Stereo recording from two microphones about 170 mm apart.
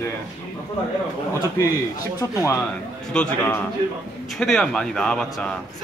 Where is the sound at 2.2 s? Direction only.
20° left (ahead or behind).